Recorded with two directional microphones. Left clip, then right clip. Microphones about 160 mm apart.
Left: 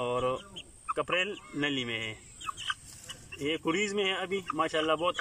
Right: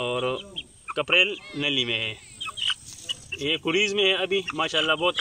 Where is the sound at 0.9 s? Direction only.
5° right (ahead or behind).